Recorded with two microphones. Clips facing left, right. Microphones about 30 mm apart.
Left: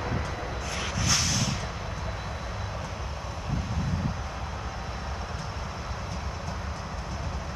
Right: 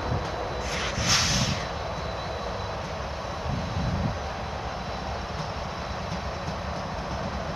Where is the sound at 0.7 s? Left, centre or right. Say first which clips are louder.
Right 2 dB; centre.